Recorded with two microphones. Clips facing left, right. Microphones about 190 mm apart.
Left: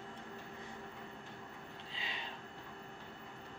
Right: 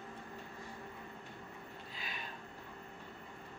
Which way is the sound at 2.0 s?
25° left (ahead or behind).